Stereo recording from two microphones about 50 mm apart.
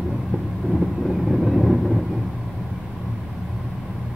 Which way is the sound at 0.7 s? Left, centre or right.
Centre.